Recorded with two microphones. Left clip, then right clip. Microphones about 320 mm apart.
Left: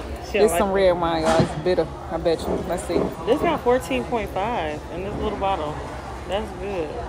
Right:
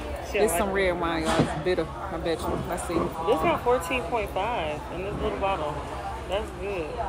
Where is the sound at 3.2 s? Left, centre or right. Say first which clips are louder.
Left 3 dB; left.